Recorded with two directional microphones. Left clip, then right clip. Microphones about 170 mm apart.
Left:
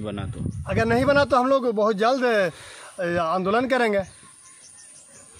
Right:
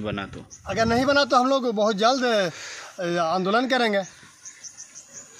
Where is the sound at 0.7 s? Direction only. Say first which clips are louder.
Left 1 dB; 45° left (ahead or behind).